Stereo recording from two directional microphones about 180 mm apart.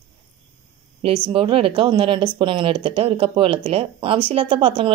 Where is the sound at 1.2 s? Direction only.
30° right (ahead or behind).